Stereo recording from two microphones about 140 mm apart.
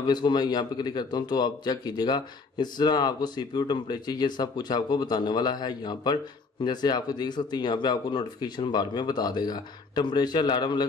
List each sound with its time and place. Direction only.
0.0 s a man's voice: 30° left (ahead or behind)